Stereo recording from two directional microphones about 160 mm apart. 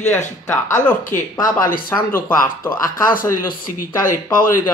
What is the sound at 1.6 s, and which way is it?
Speech, 65° left (ahead or behind).